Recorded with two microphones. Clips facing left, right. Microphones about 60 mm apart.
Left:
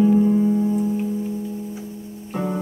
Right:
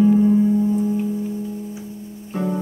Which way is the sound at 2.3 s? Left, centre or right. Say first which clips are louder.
Right 1 dB; centre.